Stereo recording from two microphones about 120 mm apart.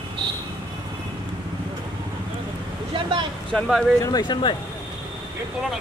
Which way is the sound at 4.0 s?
35° left (ahead or behind).